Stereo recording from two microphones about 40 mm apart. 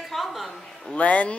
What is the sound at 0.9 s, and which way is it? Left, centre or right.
Speech, left.